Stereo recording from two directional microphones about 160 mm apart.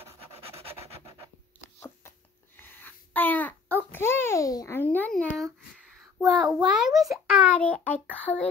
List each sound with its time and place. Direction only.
0.0 s rub: 40° right (ahead or behind)
1.8 s babbling: 15° left (ahead or behind)
6.1 s a sound: centre (ahead or behind)